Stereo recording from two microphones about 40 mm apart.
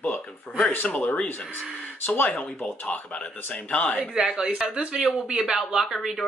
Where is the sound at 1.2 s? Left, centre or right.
Left.